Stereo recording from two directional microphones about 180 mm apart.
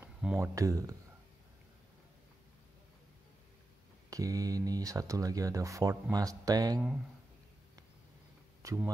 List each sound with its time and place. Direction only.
0.0 s a sound: 5° right (ahead or behind)
0.4 s speech: 20° right (ahead or behind)
4.1 s speech: 20° right (ahead or behind)
8.6 s speech: 15° right (ahead or behind)